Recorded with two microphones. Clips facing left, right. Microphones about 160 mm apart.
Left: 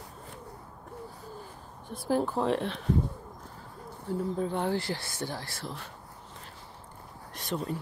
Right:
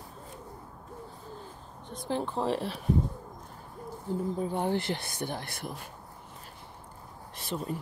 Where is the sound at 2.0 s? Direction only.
5° left (ahead or behind).